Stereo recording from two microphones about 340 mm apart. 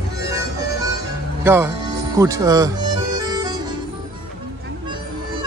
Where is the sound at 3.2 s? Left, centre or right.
Centre.